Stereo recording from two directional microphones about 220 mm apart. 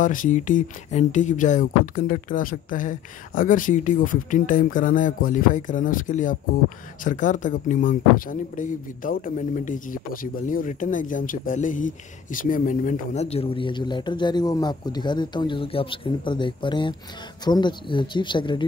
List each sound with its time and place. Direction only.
0.0 s speech: 35° left (ahead or behind); by 18.7 s 20° left (ahead or behind)